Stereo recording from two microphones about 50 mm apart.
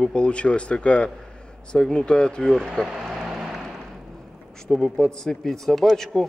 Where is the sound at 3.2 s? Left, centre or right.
Centre.